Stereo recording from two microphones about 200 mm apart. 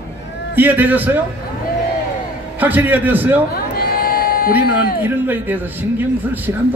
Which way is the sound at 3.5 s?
50° left (ahead or behind).